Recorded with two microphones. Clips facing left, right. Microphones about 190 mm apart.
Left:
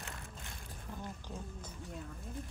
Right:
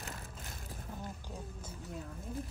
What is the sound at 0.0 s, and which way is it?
Crushing, 40° right (ahead or behind).